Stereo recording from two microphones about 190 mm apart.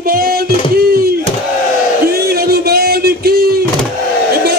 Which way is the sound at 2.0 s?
55° right (ahead or behind).